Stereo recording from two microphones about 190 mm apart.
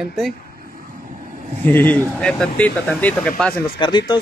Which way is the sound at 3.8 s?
25° left (ahead or behind).